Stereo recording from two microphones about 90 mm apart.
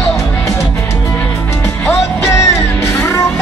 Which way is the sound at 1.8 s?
30° left (ahead or behind).